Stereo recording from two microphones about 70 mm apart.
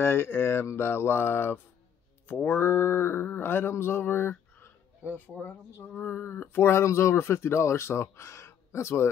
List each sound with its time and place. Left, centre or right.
0.0 s mantra: left